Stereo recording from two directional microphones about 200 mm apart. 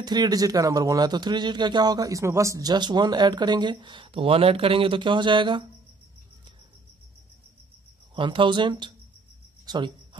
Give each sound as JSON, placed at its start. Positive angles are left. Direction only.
{"t": 0.0, "sound": "speech", "side_deg": -20}
{"t": 8.1, "sound": "speech", "side_deg": -25}